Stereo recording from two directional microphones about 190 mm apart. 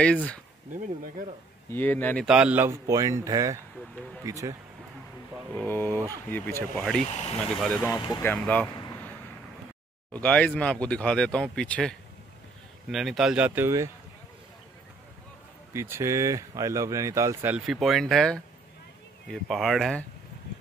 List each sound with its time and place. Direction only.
0.0 s speech: 5° left (ahead or behind)
0.7 s speech: 40° right (ahead or behind)
1.7 s speech: 10° left (ahead or behind)
2.2 s speech: 5° right (ahead or behind)
5.5 s speech: 10° left (ahead or behind)
5.9 s speech: 15° right (ahead or behind)
6.3 s speech: 10° left (ahead or behind)
7.9 s speech: 15° left (ahead or behind)
10.1 s speech: 5° left (ahead or behind); by 13.8 s 15° right (ahead or behind)
15.7 s speech: 15° right (ahead or behind)